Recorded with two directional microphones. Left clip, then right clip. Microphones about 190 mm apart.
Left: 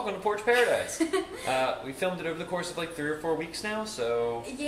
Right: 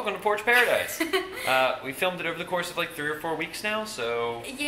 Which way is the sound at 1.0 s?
15° left (ahead or behind).